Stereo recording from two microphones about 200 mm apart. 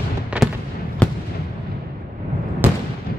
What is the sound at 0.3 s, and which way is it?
Fireworks, 5° right (ahead or behind).